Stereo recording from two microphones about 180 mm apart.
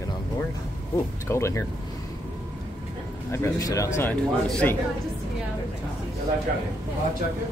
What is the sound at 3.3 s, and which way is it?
A man's voice, 15° left (ahead or behind).